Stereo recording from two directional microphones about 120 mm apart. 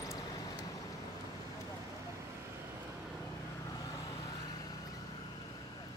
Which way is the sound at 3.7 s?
30° left (ahead or behind).